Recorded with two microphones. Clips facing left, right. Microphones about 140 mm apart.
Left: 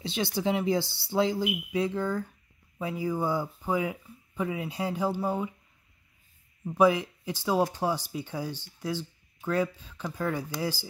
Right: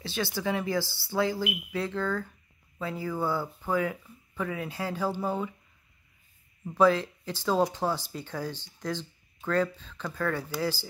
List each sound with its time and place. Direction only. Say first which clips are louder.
0.0 s speech: left 2 dB; 20° left (ahead or behind)
6.6 s speech: even; 15° left (ahead or behind)